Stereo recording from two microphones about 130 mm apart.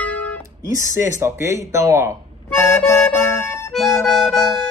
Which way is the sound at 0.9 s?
20° right (ahead or behind).